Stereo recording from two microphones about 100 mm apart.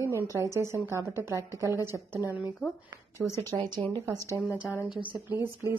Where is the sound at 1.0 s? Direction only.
25° right (ahead or behind).